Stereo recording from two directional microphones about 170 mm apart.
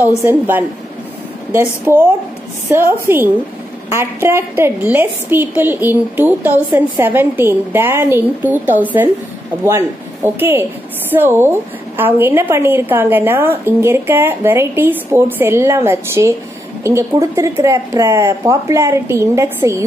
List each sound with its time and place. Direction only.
0.2 s a woman's voice: 10° right (ahead or behind)